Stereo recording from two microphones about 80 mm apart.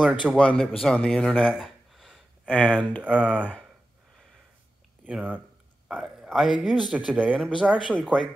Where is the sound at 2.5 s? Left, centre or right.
Centre.